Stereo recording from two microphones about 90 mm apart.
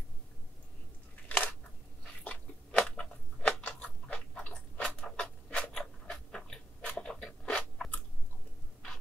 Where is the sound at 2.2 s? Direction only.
15° left (ahead or behind).